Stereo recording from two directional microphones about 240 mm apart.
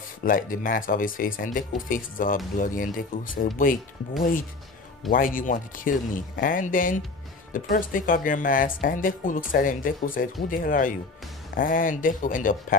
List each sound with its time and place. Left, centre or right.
0.2 s speech: left